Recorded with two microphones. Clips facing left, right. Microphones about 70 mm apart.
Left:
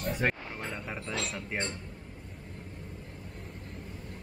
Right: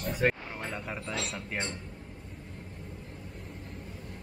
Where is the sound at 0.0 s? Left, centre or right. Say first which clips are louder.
Right 2 dB; centre.